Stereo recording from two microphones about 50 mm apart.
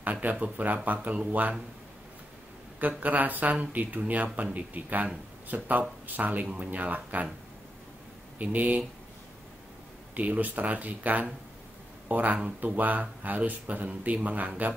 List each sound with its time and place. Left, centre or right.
0.0 s speech: right
2.8 s speech: right
8.4 s speech: right
10.1 s speech: right